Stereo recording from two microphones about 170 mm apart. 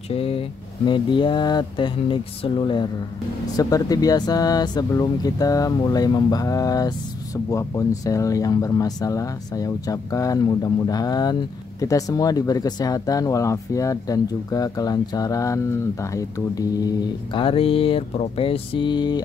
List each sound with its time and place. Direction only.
0.1 s speech: 35° left (ahead or behind)